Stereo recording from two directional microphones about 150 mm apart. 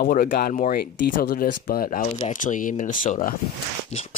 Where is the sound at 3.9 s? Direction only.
50° left (ahead or behind).